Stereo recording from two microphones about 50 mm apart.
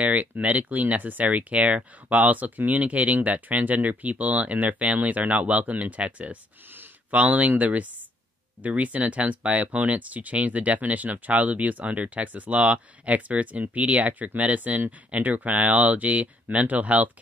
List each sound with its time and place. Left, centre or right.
0.0 s speech: right